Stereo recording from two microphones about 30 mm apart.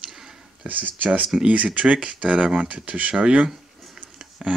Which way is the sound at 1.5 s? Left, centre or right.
Right.